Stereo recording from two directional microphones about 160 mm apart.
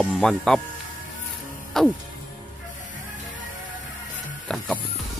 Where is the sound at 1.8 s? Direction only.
5° left (ahead or behind).